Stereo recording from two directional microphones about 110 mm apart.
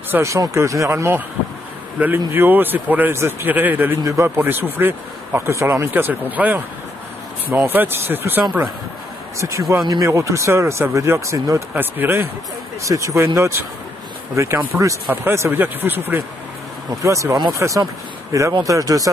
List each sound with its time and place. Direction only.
0.1 s speech: 25° right (ahead or behind)
11.7 s speech: 20° right (ahead or behind)
17.0 s speech: 30° right (ahead or behind)